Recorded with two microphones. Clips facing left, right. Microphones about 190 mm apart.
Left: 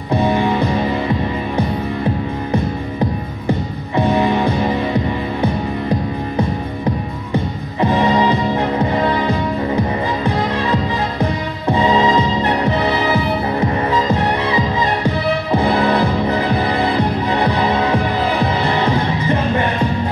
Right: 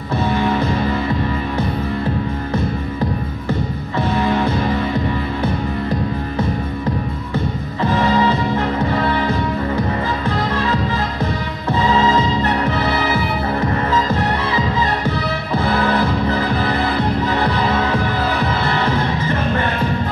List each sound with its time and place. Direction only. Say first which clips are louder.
0.1 s music: left 2 dB; 15° left (ahead or behind)
3.4 s music: left 3 dB; 15° left (ahead or behind)
7.3 s music: left 3 dB; 15° left (ahead or behind)